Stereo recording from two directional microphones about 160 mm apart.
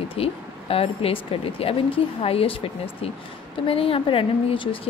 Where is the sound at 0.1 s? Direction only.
35° left (ahead or behind).